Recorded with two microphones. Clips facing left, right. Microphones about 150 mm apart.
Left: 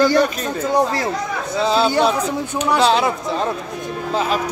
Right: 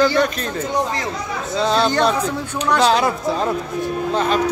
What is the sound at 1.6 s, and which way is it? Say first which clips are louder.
Speech: left 1 dB; 5° left (ahead or behind).